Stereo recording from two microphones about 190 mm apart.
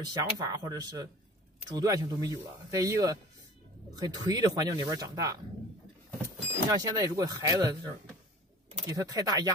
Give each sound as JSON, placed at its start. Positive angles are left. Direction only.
{"t": 0.0, "sound": "speech", "side_deg": -20}